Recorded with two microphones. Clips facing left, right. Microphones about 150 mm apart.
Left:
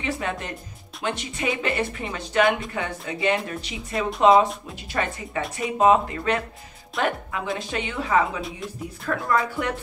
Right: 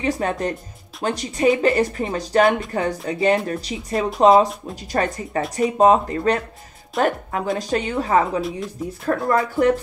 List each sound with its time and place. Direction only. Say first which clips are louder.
0.0 s speech: right 6 dB; 40° right (ahead or behind)
8.4 s speech: right 8 dB; centre (ahead or behind)
9.0 s speech: right 4 dB; 40° right (ahead or behind)